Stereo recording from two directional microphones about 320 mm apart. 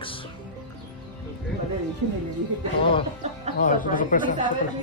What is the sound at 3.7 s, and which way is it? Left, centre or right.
Speech, left.